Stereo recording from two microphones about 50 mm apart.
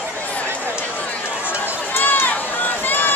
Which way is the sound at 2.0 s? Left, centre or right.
Left.